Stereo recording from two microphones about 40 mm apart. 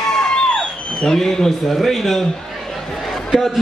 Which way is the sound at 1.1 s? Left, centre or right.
Centre.